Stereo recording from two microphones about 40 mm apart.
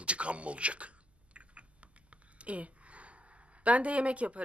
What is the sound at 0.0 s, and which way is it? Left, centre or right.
Typing, right.